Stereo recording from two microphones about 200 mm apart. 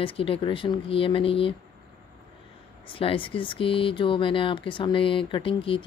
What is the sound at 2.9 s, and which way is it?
Speech, 25° left (ahead or behind).